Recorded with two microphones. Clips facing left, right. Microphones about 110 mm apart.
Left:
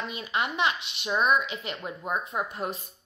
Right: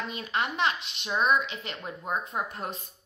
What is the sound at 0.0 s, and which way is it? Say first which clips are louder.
A woman's voice: left 1 dB; 5° left (ahead or behind).